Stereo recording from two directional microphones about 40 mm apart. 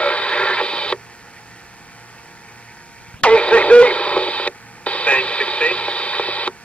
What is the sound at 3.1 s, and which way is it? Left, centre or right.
Radio, left.